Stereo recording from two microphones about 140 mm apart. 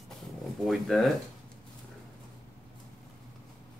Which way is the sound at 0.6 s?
Centre (ahead or behind).